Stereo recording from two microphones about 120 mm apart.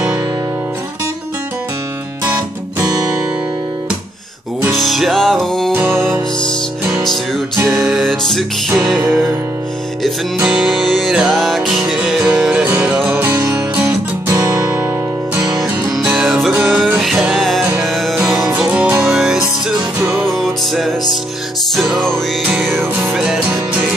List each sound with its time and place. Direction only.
4.7 s music: centre (ahead or behind)
5.7 s music: 15° right (ahead or behind)
7.7 s music: centre (ahead or behind)
10.4 s music: 10° right (ahead or behind)
14.3 s guitar: 30° right (ahead or behind)
15.6 s music: 10° right (ahead or behind)
17.0 s music: centre (ahead or behind)
18.5 s music: 10° right (ahead or behind)
22.4 s music: 10° right (ahead or behind)
23.1 s music: 5° right (ahead or behind)